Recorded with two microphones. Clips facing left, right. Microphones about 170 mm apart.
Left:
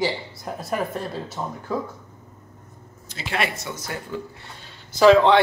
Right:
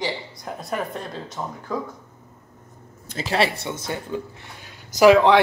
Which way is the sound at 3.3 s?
30° right (ahead or behind).